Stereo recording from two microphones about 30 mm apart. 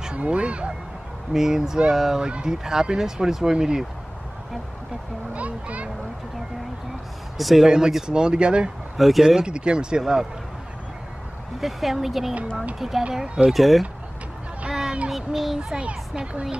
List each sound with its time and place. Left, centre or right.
0.1 s speech: right
1.3 s speech: centre
3.5 s speech: right
5.3 s a child's voice: right
7.3 s speech: centre
7.6 s speech: right
8.9 s speech: centre
9.4 s speech: right
11.6 s speech: centre
14.7 s a sound: centre
15.0 s speech: centre
15.8 s speech: right